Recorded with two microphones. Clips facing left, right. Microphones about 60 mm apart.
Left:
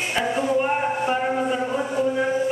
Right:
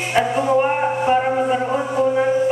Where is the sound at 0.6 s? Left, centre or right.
Right.